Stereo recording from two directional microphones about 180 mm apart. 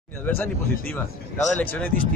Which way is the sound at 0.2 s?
10° left (ahead or behind).